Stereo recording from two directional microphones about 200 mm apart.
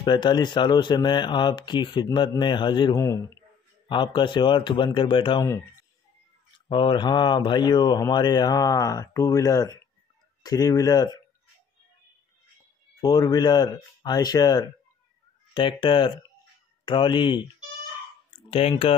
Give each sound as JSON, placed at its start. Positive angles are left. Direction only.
{"t": 0.0, "sound": "speech", "side_deg": 20}
{"t": 6.7, "sound": "speech", "side_deg": 25}
{"t": 13.0, "sound": "speech", "side_deg": 20}
{"t": 18.5, "sound": "speech", "side_deg": 30}